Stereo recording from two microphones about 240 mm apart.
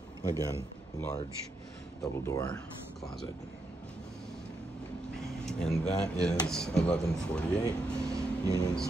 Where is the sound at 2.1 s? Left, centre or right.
Centre.